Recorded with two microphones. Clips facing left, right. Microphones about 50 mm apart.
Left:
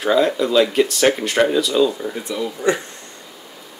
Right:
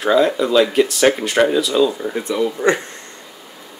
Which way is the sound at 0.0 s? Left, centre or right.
Centre.